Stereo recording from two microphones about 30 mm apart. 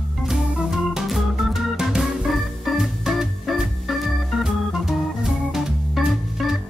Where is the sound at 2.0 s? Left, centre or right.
Centre.